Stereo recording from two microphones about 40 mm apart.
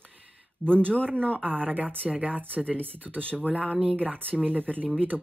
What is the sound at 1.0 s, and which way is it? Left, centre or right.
Speech, right.